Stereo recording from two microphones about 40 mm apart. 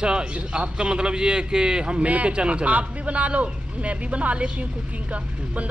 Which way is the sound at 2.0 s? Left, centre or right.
Right.